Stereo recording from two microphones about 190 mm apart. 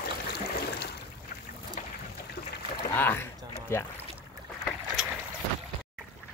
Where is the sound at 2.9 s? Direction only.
10° left (ahead or behind).